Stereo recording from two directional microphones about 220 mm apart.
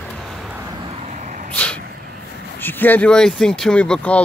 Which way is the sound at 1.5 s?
5° left (ahead or behind).